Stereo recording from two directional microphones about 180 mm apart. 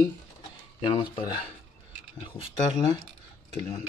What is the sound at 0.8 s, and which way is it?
Speech, 25° left (ahead or behind).